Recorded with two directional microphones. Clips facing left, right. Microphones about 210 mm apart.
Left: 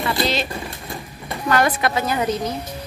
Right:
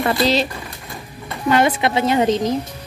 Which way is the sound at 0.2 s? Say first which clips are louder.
Right 4 dB; 35° right (ahead or behind).